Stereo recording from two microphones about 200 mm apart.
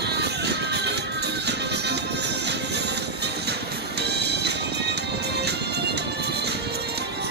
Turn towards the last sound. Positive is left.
turn(degrees=-55)  # may be behind; listen again after turning